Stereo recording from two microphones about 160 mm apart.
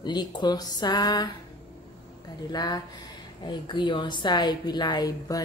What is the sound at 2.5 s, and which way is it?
A woman's voice, 25° left (ahead or behind).